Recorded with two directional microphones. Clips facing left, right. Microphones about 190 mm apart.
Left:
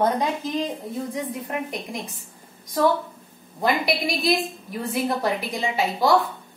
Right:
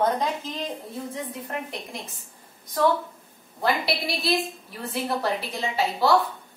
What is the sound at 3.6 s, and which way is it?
A woman's voice, 15° left (ahead or behind).